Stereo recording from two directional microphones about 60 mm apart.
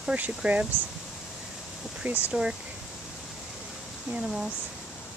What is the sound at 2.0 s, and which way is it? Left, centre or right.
Speech, right.